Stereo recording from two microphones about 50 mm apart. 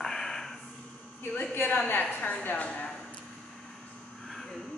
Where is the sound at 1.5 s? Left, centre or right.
Left.